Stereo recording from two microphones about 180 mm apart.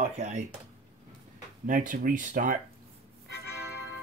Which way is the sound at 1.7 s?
50° right (ahead or behind).